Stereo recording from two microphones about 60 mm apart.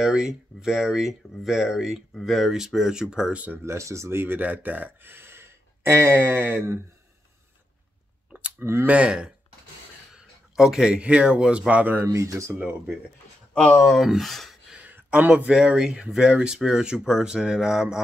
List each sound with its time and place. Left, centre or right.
0.0 s speech: centre
3.6 s speech: right
8.3 s clicking: right
8.5 s speech: right
8.8 s speech: right
12.1 s speech: right
12.5 s speech: right
13.6 s speech: centre
13.8 s speech: centre
14.8 s a sound: right
15.0 s speech: right; by 18.0 s centre